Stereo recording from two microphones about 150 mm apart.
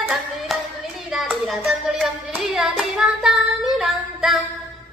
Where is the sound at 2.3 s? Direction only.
5° right (ahead or behind).